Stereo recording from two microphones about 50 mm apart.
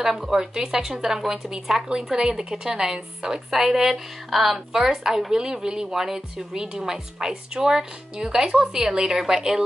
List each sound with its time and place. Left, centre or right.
0.0 s speech: centre